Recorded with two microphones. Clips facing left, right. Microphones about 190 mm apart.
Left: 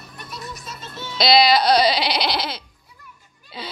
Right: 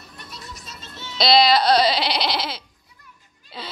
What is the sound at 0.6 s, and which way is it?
Music, 55° left (ahead or behind).